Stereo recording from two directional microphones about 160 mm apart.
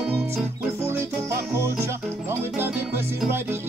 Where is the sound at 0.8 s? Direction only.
15° right (ahead or behind).